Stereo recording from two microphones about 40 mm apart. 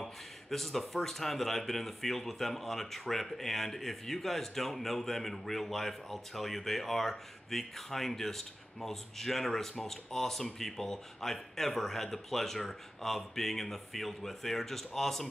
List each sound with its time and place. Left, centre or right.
0.0 s speech: centre